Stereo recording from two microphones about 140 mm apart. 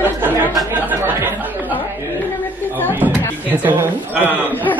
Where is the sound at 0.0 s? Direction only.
15° right (ahead or behind).